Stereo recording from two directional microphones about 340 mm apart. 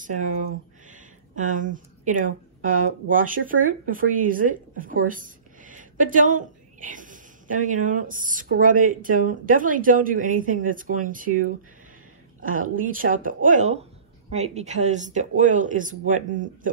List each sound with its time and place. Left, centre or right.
0.0 s a woman's voice: right
12.4 s a woman's voice: right